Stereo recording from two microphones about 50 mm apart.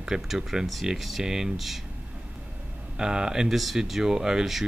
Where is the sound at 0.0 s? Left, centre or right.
Centre.